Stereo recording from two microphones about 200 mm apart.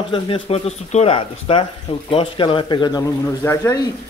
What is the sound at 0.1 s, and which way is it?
A man's voice, 30° left (ahead or behind).